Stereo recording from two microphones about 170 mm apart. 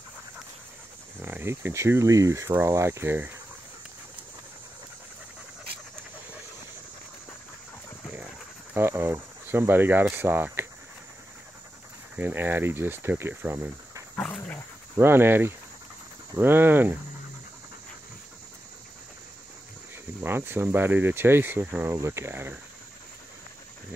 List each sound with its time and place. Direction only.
1.2 s speech: 15° right (ahead or behind)
8.7 s speech: 15° right (ahead or behind)
12.2 s speech: 10° right (ahead or behind)
14.1 s dog: 5° left (ahead or behind)
15.0 s speech: 15° right (ahead or behind)
20.2 s speech: 15° right (ahead or behind)